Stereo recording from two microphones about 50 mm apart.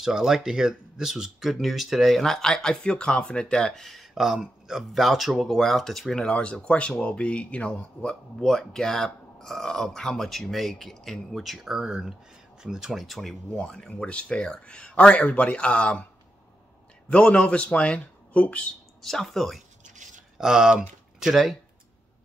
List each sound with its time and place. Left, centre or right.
0.0 s speech: centre; by 3.5 s left
3.5 s speech: centre
6.1 s speech: left
8.4 s speech: centre
12.9 s speech: centre
13.7 s speech: centre
17.1 s speech: centre
19.0 s speech: centre
20.3 s speech: centre